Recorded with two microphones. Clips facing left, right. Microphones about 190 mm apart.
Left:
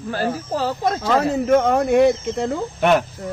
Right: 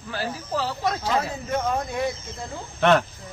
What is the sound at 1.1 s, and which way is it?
Speech, 75° left (ahead or behind).